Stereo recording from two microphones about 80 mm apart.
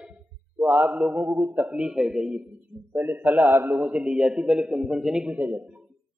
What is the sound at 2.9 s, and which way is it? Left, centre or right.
Speech, right.